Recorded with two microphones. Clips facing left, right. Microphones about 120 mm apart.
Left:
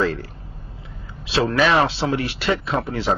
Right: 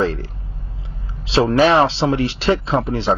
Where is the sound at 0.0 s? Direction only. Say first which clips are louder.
Right 2 dB; 30° right (ahead or behind).